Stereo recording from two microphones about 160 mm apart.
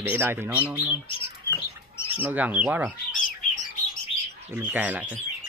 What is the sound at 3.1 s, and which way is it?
Bird, 55° left (ahead or behind).